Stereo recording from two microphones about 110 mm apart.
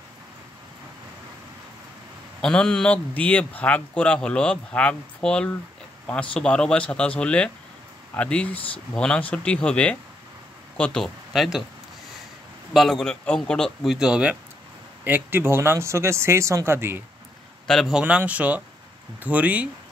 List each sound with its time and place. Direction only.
2.4 s a man's voice: 5° left (ahead or behind)
12.7 s a man's voice: centre (ahead or behind)
13.9 s speech: 5° right (ahead or behind)
17.6 s a man's voice: centre (ahead or behind)
18.0 s speech: 15° right (ahead or behind)